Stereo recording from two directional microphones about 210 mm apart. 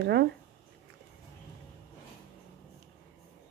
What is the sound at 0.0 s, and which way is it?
Speech, 50° right (ahead or behind).